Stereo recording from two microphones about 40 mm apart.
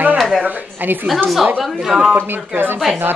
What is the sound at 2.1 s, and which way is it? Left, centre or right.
Speech, right.